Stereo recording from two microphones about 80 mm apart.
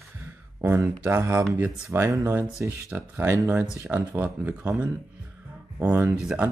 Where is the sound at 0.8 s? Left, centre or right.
Right.